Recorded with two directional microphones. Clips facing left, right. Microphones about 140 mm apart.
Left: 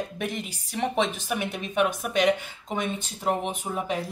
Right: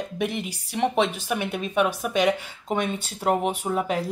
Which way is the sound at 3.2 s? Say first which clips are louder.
Right 4 dB; 50° right (ahead or behind).